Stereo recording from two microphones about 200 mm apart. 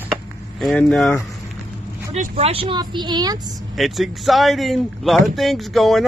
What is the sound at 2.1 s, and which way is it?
Speech, 30° right (ahead or behind).